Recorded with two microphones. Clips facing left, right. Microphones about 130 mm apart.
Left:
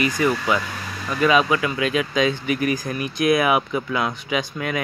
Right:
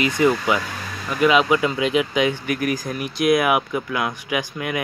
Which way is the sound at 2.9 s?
5° right (ahead or behind).